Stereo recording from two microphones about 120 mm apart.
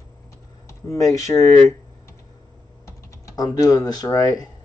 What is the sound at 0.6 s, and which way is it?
Speech, 25° left (ahead or behind).